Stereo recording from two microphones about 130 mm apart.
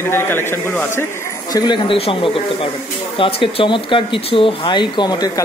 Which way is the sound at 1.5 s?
35° left (ahead or behind).